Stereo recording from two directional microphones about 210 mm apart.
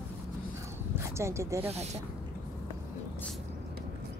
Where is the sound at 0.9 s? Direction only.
15° right (ahead or behind).